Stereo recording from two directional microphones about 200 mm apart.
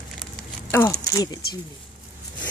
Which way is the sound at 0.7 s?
15° left (ahead or behind).